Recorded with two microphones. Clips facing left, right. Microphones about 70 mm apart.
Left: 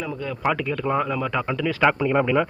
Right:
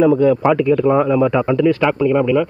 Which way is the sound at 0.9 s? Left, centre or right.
Centre.